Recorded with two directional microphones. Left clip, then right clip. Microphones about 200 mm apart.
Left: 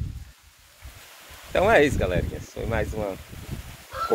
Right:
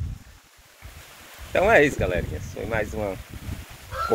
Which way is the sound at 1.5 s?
Centre (ahead or behind).